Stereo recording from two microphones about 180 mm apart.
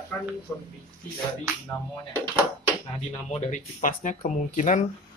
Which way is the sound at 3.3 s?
40° left (ahead or behind).